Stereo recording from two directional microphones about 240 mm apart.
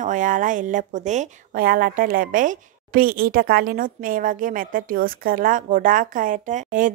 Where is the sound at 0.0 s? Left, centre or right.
Right.